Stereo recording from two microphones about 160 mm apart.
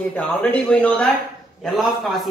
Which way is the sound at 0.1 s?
10° left (ahead or behind).